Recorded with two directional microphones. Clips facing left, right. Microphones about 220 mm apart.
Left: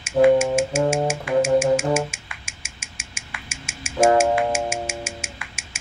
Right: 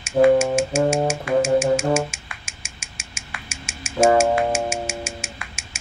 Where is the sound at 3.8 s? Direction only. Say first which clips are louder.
Right 1 dB; 40° right (ahead or behind).